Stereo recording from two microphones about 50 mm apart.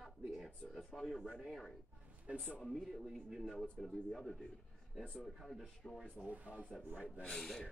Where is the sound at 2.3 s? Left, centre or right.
Right.